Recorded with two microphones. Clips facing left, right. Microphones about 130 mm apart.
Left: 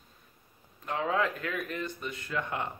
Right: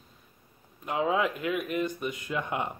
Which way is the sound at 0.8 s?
15° right (ahead or behind).